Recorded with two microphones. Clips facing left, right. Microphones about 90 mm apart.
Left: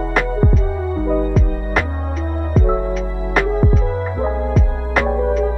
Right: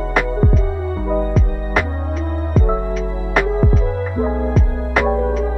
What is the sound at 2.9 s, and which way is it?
Music, centre (ahead or behind).